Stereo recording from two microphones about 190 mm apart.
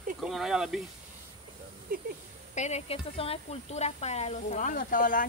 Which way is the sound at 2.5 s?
35° left (ahead or behind).